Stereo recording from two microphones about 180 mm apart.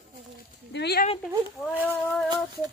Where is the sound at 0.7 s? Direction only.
65° left (ahead or behind).